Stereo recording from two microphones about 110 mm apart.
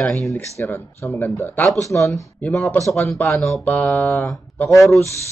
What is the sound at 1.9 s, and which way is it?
Speech, 30° left (ahead or behind).